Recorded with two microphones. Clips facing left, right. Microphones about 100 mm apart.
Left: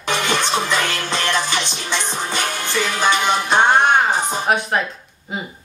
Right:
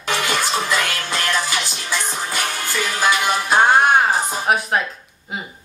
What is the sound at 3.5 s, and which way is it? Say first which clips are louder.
Music: right 1 dB; 5° right (ahead or behind).